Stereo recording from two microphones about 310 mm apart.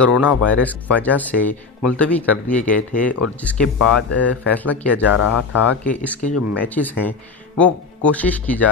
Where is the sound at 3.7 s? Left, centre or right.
Left.